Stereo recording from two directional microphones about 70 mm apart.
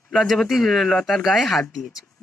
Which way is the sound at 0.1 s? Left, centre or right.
Centre.